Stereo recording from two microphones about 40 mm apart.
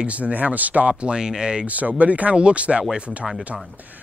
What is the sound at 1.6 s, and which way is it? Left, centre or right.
Speech, right.